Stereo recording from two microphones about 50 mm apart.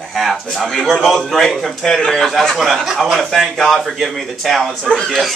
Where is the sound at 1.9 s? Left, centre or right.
Centre.